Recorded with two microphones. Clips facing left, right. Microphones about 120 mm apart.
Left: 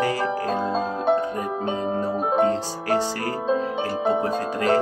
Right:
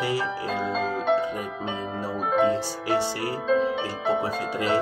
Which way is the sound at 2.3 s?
40° left (ahead or behind).